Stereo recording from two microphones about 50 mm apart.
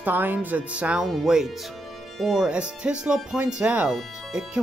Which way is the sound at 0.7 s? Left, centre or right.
Right.